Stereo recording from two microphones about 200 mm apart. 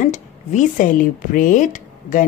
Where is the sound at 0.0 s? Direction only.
35° left (ahead or behind).